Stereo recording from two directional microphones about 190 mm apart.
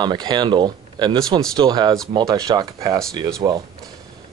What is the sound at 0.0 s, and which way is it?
Speech, 25° right (ahead or behind).